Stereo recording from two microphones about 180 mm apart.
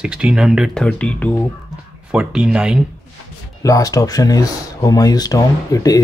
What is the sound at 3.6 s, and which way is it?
Speech, 20° left (ahead or behind).